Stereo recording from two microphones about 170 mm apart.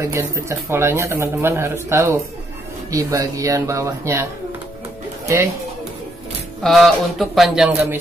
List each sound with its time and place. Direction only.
0.0 s speech: 15° right (ahead or behind)
6.6 s speech: centre (ahead or behind)